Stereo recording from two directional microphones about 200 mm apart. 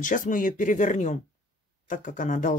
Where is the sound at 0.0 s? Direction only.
40° left (ahead or behind).